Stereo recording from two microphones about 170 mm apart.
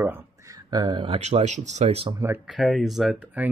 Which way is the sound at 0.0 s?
15° right (ahead or behind).